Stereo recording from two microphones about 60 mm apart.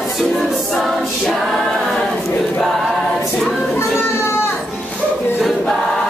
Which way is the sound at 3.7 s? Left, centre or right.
Left.